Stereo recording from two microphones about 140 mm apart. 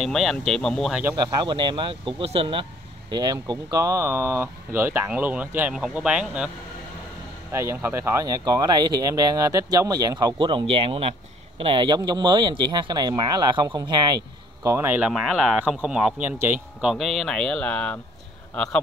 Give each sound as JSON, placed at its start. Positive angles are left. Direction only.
{"t": 0.0, "sound": "speech", "side_deg": 0}
{"t": 1.4, "sound": "speech", "side_deg": -35}
{"t": 7.5, "sound": "speech", "side_deg": -20}
{"t": 14.6, "sound": "speech", "side_deg": -20}
{"t": 15.1, "sound": "speech", "side_deg": 0}
{"t": 16.8, "sound": "a man's voice", "side_deg": 0}